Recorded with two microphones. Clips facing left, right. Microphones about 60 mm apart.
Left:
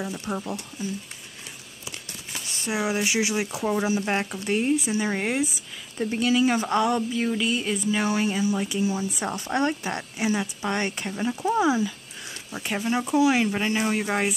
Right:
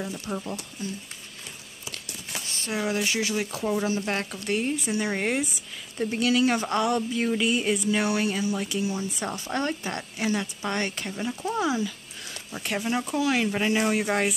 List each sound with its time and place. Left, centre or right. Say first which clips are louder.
0.3 s speech: left 2 dB; centre
2.7 s speech: left 2 dB; centre
7.9 s speech: left 4 dB; centre
9.3 s a woman's voice: left 4 dB; left
12.4 s speech: left 1 dB; centre